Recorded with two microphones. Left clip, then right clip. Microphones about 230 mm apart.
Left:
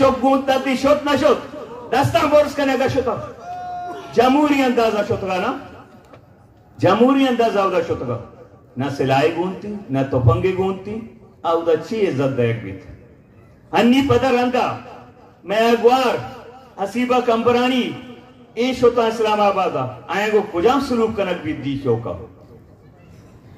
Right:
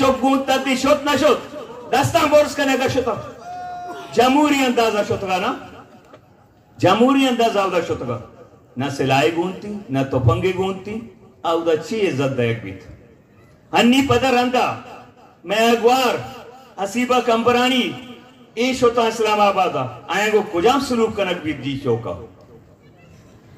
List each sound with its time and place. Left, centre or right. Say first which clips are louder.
0.0 s a man's voice: left 2 dB; right
3.4 s a sound: left 2 dB; centre
4.1 s a man's voice: even; right
6.8 s a man's voice: even; right
13.7 s a man's voice: even; right